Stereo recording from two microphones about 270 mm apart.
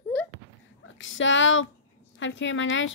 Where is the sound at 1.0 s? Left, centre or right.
Left.